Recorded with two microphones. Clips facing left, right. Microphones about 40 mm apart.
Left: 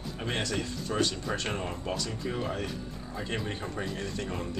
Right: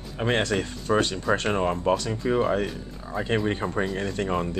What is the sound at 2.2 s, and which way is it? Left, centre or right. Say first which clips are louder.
Speech: right 10 dB; right.